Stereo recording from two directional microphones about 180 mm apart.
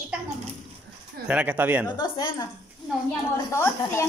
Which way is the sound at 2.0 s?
25° left (ahead or behind).